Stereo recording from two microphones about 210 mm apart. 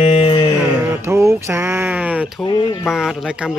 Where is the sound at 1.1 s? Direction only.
10° right (ahead or behind).